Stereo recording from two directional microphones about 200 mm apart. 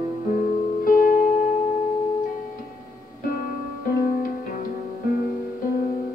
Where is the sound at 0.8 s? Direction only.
45° left (ahead or behind).